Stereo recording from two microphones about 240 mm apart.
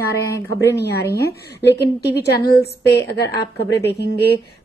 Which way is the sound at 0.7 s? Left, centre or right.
Left.